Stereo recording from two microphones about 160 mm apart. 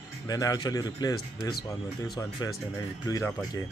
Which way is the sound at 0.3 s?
25° left (ahead or behind).